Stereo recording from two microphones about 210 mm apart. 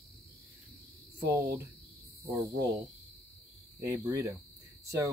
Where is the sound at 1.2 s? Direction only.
15° right (ahead or behind).